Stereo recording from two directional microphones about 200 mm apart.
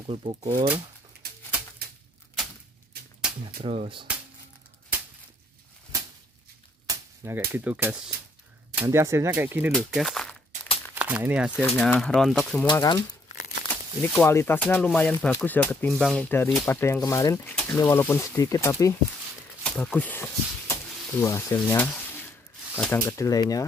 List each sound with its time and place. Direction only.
0.0 s speech: 30° right (ahead or behind)
3.6 s speech: 30° right (ahead or behind)
6.9 s speech: 10° right (ahead or behind)
9.7 s speech: centre (ahead or behind)
11.6 s speech: 5° left (ahead or behind)
12.6 s speech: 20° left (ahead or behind)
13.7 s speech: 10° left (ahead or behind)